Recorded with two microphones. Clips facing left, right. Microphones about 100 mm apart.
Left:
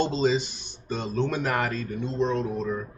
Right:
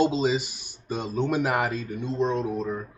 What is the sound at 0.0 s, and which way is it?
Speech, 5° right (ahead or behind).